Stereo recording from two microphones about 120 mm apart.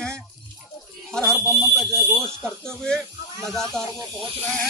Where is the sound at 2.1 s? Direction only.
5° left (ahead or behind).